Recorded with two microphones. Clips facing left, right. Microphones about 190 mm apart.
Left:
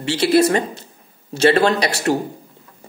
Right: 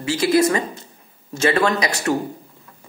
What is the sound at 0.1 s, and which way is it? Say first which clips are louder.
Speech: left 2 dB; 30° left (ahead or behind).